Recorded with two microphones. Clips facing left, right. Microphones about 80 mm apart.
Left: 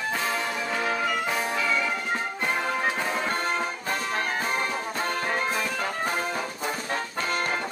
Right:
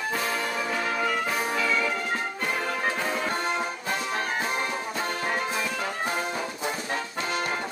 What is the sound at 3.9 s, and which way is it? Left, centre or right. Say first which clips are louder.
Music: left 1 dB; left.